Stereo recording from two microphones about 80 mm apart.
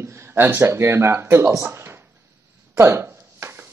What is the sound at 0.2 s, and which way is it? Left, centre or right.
Speech, right.